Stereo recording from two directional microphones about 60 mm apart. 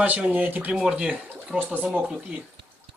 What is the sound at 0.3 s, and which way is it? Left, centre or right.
Speech, right.